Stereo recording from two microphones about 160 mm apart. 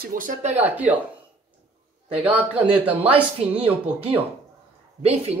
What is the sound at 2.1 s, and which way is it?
Speech, 10° right (ahead or behind).